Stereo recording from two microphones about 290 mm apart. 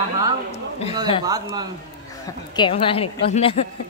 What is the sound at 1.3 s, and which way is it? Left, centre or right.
Speech, centre.